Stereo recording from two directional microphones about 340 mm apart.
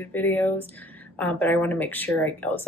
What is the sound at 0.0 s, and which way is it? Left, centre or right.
Speech, centre.